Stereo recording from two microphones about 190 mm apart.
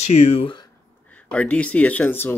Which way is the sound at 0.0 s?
35° left (ahead or behind).